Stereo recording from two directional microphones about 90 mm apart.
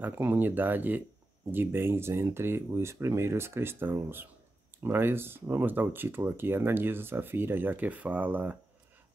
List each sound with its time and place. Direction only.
0.0 s speech: 20° right (ahead or behind)